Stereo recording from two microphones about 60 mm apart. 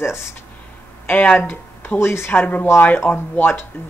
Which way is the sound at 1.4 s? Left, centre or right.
Left.